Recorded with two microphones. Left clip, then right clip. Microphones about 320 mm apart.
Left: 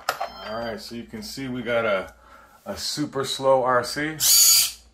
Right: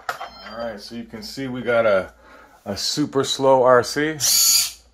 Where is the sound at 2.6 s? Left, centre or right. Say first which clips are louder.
Right 5 dB; right.